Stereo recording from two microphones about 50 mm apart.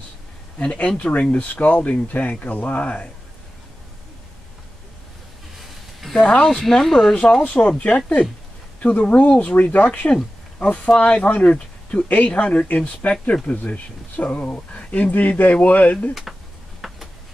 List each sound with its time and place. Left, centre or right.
0.6 s speech: left
6.1 s speech: left
6.4 s speech: centre
7.4 s speech: left
8.7 s a sound: left
9.1 s speech: left
16.8 s a sound: centre